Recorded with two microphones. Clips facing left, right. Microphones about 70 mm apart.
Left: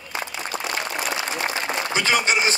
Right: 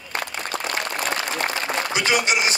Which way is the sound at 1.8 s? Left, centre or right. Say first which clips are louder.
Left 1 dB; left.